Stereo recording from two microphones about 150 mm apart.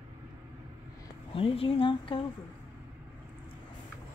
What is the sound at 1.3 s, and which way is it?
Speech, 40° left (ahead or behind).